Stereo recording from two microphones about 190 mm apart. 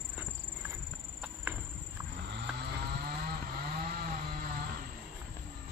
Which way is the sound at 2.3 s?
60° right (ahead or behind).